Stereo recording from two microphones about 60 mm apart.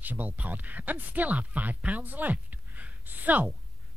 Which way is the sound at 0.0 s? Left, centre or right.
Right.